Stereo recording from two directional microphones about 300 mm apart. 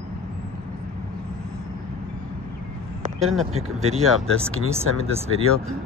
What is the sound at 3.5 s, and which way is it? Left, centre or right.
Speech, right.